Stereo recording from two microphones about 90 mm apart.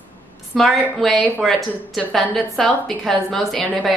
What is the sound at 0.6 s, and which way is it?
A woman's voice, centre (ahead or behind).